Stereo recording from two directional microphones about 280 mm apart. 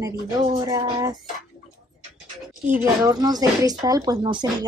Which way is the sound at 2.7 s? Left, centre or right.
Centre.